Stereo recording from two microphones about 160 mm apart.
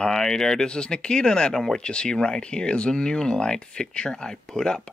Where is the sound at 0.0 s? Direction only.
5° left (ahead or behind).